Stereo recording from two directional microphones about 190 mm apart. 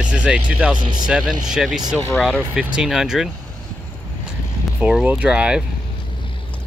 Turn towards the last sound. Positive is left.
turn(degrees=-5)  # may be behind; listen again after turning